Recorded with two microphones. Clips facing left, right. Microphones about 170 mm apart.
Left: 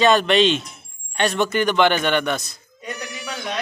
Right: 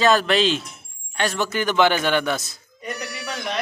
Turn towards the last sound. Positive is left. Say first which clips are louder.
# right 1 dB
turn(degrees=0)  # may be behind; listen again after turning